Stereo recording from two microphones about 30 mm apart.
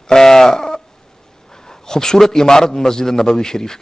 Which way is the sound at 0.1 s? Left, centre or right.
Centre.